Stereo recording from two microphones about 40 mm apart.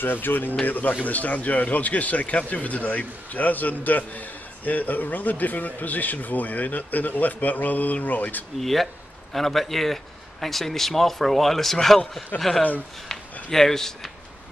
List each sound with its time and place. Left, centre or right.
0.0 s speech: left
0.7 s speech: left
8.5 s a man's voice: centre